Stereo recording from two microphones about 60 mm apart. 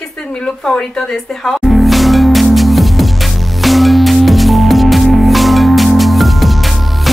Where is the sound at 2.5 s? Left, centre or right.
Centre.